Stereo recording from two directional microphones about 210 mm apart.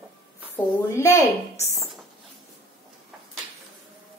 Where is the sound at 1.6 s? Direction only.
15° right (ahead or behind).